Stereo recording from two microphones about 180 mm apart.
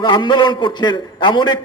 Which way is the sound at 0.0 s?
25° left (ahead or behind).